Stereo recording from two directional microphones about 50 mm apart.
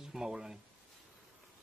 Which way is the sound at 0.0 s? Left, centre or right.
Centre.